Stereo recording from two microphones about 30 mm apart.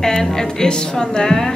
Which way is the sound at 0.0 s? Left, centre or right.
Centre.